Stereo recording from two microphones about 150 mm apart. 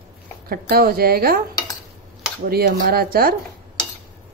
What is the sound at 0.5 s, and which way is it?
Speech, 90° right.